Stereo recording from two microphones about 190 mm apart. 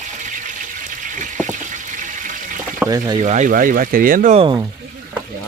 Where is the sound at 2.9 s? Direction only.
20° right (ahead or behind).